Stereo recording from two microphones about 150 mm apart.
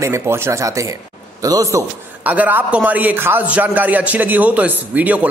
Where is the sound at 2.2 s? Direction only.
10° right (ahead or behind).